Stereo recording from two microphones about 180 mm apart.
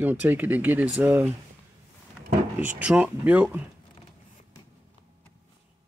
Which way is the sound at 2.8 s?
10° right (ahead or behind).